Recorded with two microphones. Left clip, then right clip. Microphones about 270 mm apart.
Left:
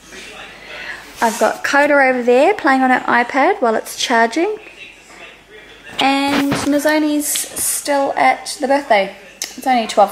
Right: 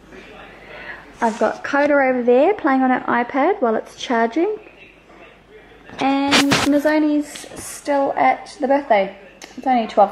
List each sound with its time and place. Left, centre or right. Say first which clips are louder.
1.2 s speech: left 4 dB; centre
3.5 s speech: left 3 dB; centre
4.1 s speech: left 4 dB; centre
6.0 s a sound: even; centre
8.2 s a woman's voice: left 3 dB; centre